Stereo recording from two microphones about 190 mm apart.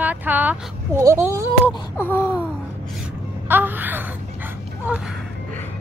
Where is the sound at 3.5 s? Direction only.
10° right (ahead or behind).